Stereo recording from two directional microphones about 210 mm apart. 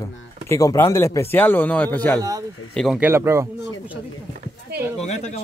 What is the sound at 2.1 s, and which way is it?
Speech, 15° right (ahead or behind).